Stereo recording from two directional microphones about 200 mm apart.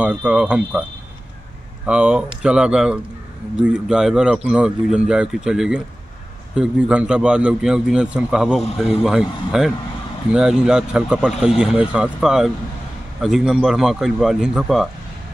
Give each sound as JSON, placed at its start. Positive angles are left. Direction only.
{"t": 0.0, "sound": "speech", "side_deg": -5}
{"t": 1.9, "sound": "a man's voice", "side_deg": -5}